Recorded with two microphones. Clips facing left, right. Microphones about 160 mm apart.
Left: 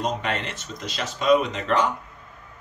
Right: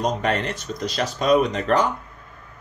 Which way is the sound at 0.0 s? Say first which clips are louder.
Right 4 dB; 40° right (ahead or behind).